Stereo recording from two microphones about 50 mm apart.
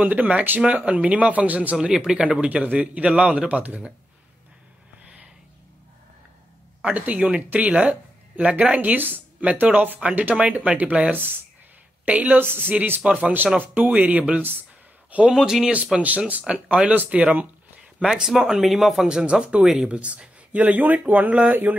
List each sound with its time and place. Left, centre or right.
0.0 s speech: right
1.8 s speech: centre
6.8 s a woman's voice: right
12.4 s speech: right
13.0 s speech: right
13.6 s a man's voice: right
15.3 s speech: centre
15.7 s speech: right
17.9 s speech: centre
19.0 s speech: centre
19.6 s speech: centre
19.9 s speech: right